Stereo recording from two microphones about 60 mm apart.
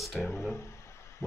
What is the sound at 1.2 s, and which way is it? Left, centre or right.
Heart sounds, left.